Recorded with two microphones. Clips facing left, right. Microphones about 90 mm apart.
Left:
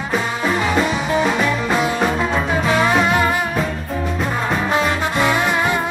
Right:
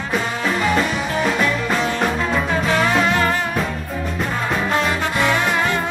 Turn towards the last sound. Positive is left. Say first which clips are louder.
# left 1 dB
turn(degrees=10)  # may be behind; listen again after turning